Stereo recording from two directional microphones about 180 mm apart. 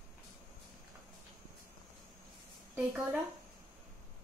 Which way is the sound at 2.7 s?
10° right (ahead or behind).